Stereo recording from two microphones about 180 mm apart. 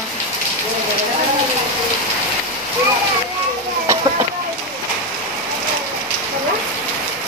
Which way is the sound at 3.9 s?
15° right (ahead or behind).